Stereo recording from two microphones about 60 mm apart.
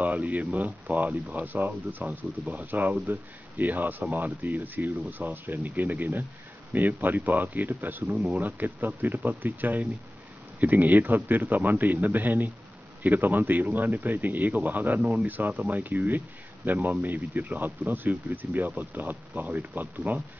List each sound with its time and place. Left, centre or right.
0.0 s speech: right
13.9 s speech: right
16.6 s speech: right